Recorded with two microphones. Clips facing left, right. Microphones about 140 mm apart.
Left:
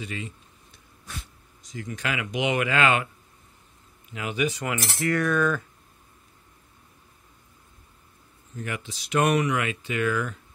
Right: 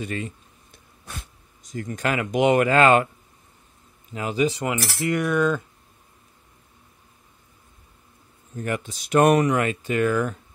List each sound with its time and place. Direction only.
0.0 s speech: 50° right (ahead or behind)
4.1 s speech: 35° right (ahead or behind)
8.5 s speech: 45° right (ahead or behind)